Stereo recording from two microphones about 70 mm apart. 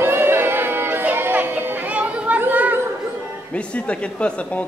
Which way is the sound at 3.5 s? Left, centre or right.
Centre.